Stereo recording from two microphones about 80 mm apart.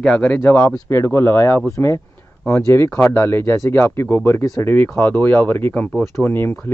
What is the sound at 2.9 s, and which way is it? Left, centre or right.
Speech, centre.